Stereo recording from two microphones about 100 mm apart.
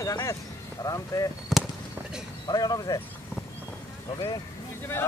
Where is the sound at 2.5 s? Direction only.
40° left (ahead or behind).